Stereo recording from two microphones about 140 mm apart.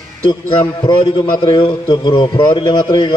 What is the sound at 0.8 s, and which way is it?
A man's voice, 30° left (ahead or behind).